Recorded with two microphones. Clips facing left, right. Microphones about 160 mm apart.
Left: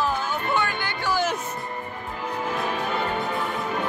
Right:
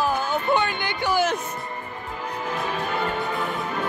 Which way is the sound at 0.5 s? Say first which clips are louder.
Right 2 dB; 20° right (ahead or behind).